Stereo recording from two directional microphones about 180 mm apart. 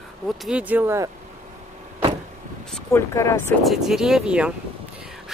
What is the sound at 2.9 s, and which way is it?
Speech, 15° left (ahead or behind).